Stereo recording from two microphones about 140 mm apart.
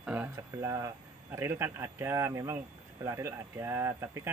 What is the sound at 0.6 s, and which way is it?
Speech, 20° right (ahead or behind).